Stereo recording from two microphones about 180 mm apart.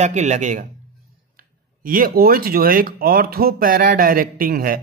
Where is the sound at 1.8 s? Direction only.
50° right (ahead or behind).